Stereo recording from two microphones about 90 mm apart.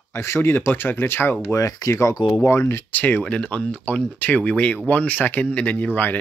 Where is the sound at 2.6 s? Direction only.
25° left (ahead or behind).